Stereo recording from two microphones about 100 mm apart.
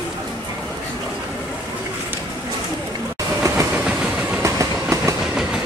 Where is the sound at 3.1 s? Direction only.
30° right (ahead or behind).